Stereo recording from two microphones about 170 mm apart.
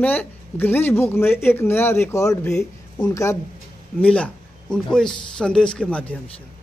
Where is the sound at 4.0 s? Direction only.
5° left (ahead or behind).